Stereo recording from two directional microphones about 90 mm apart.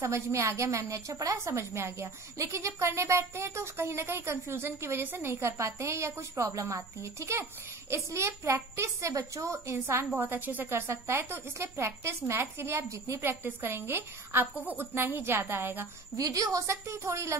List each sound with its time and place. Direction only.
0.0 s a woman's voice: 30° right (ahead or behind)
16.2 s a woman's voice: 40° right (ahead or behind)